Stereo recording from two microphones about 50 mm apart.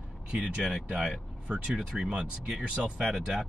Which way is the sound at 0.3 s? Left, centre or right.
Right.